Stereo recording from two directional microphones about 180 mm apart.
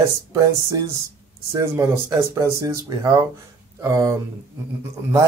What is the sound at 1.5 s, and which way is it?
Speech, 15° right (ahead or behind).